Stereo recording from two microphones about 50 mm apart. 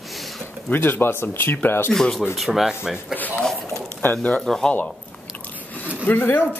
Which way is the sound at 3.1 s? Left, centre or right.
Left.